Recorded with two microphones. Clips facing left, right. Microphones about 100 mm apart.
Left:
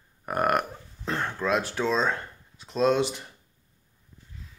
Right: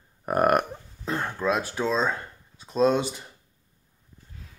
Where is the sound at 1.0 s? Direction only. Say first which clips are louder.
Right 1 dB; 10° right (ahead or behind).